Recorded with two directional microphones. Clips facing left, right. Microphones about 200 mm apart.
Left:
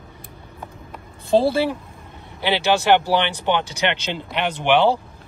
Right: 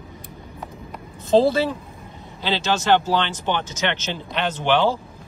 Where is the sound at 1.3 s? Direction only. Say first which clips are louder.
Right 1 dB; 10° left (ahead or behind).